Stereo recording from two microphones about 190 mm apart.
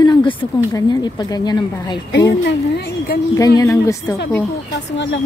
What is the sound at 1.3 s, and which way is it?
Speech, 20° left (ahead or behind).